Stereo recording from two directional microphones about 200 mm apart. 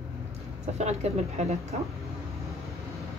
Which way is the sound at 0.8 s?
35° right (ahead or behind).